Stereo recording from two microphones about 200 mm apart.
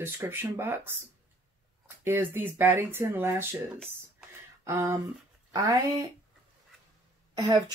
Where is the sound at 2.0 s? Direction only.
10° right (ahead or behind).